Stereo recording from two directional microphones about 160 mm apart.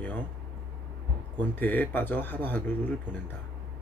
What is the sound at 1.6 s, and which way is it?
Speech, 10° left (ahead or behind).